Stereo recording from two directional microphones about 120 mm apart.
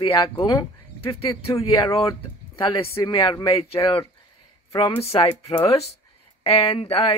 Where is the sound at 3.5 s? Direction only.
55° left (ahead or behind).